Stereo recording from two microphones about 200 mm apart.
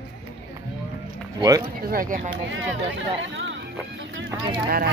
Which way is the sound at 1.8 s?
45° right (ahead or behind).